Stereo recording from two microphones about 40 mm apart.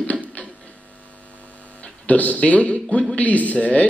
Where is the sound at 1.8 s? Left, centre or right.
Left.